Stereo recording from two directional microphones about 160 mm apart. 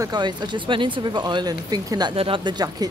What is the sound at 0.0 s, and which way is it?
Speech, 25° right (ahead or behind).